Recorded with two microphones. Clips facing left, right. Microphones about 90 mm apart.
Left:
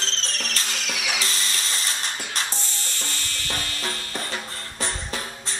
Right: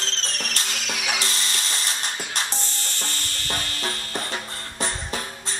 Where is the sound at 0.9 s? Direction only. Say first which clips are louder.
Right 1 dB; 35° right (ahead or behind).